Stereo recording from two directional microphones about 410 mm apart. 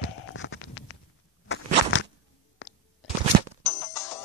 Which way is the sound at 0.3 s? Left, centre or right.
Left.